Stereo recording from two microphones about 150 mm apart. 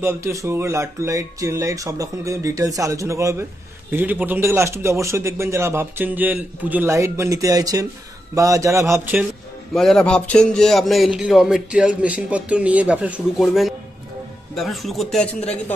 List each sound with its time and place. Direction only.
0.0 s a man's voice: 20° right (ahead or behind)
9.8 s speech: 5° left (ahead or behind)